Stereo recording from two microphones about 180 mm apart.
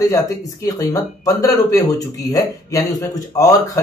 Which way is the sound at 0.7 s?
20° left (ahead or behind).